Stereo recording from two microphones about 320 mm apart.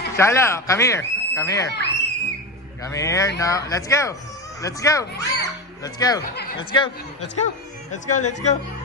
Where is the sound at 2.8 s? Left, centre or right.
Centre.